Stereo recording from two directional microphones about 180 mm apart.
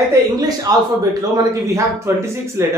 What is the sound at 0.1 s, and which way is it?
A man's voice, 20° right (ahead or behind).